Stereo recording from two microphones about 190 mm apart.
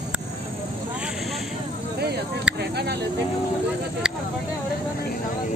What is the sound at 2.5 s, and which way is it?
Speech, 60° right (ahead or behind).